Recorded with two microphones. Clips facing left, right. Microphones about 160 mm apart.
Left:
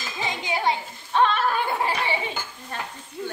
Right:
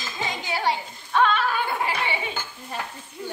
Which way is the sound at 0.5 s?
20° left (ahead or behind).